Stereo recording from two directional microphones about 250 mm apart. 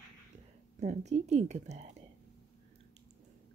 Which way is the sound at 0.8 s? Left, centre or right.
Right.